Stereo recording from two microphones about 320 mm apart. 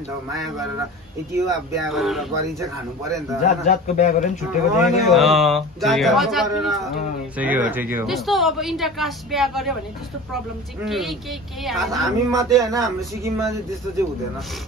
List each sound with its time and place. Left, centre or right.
1.3 s a woman's voice: centre
3.6 s a man's voice: left
4.8 s a woman's voice: centre
11.9 s speech: centre